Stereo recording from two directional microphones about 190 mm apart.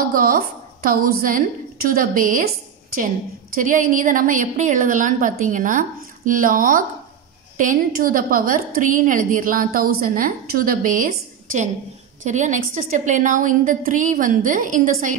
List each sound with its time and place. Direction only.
0.0 s a woman's voice: 50° right (ahead or behind)
3.5 s a woman's voice: 45° right (ahead or behind)